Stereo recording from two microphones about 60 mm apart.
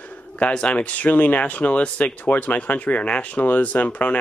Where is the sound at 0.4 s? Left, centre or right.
Centre.